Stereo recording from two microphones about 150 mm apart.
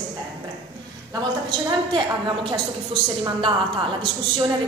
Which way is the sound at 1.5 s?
30° right (ahead or behind).